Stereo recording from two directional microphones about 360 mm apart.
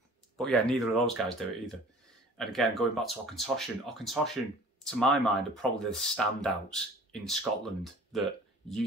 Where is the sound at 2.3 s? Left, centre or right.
Centre.